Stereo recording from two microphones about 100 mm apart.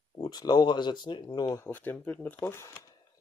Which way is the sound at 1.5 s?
25° left (ahead or behind).